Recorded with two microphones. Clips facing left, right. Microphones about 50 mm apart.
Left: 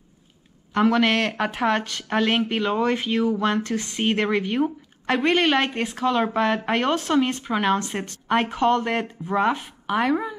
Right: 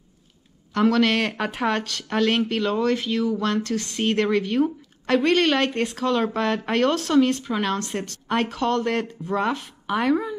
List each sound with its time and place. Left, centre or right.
0.7 s speech: centre
1.3 s speech: centre
1.8 s speech: centre
9.8 s speech: centre